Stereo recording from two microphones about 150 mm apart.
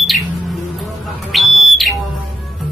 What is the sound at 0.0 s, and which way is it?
Music, centre (ahead or behind).